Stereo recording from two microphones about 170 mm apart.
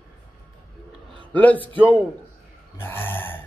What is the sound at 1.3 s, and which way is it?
Speech, 10° left (ahead or behind).